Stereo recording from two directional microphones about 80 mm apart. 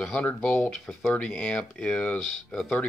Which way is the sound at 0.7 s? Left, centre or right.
Centre.